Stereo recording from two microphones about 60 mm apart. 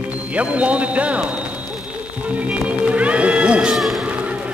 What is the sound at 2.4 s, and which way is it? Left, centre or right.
Music, right.